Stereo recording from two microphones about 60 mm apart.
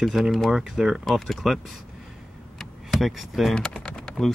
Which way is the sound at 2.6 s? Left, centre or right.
Centre.